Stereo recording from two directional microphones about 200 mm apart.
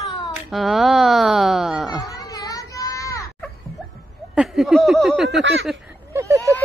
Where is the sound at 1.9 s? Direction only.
20° left (ahead or behind).